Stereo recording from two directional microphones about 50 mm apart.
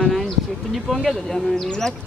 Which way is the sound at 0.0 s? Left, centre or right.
Centre.